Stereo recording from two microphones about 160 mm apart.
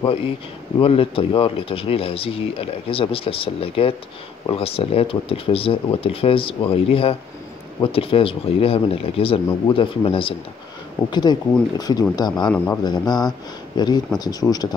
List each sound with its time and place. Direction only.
0.7 s speech: 35° left (ahead or behind)
12.4 s speech: 10° left (ahead or behind)
12.8 s speech: 25° left (ahead or behind)